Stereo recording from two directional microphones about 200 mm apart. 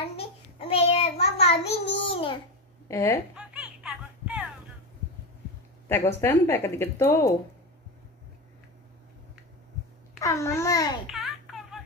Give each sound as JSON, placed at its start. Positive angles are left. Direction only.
{"t": 0.1, "sound": "child singing", "side_deg": 30}
{"t": 2.0, "sound": "a sound", "side_deg": 25}
{"t": 2.9, "sound": "speech", "side_deg": 15}
{"t": 3.3, "sound": "music", "side_deg": -5}
{"t": 5.9, "sound": "speech", "side_deg": 10}
{"t": 10.2, "sound": "speech", "side_deg": 15}
{"t": 11.1, "sound": "a sound", "side_deg": 0}